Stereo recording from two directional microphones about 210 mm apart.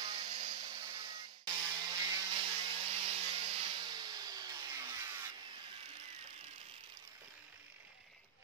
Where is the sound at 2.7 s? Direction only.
30° right (ahead or behind).